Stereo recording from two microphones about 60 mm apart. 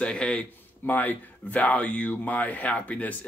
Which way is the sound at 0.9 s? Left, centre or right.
Left.